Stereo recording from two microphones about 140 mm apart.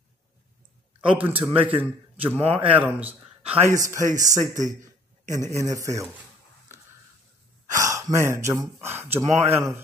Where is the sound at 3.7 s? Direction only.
25° right (ahead or behind).